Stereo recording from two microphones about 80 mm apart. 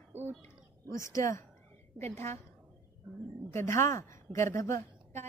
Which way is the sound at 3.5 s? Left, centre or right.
Left.